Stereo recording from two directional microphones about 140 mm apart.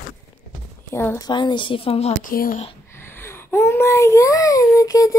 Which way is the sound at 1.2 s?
35° left (ahead or behind).